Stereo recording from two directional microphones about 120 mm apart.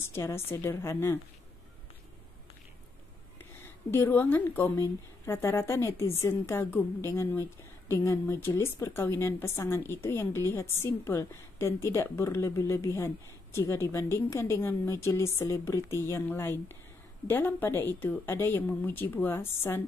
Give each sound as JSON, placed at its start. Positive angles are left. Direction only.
{"t": 0.0, "sound": "a woman's voice", "side_deg": 20}
{"t": 3.6, "sound": "a woman's voice", "side_deg": 20}